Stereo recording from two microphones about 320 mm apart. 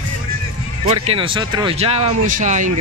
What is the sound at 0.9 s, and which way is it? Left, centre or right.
Speech, centre.